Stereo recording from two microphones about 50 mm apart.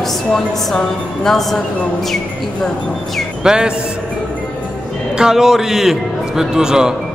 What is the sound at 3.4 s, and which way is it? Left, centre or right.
Speech, centre.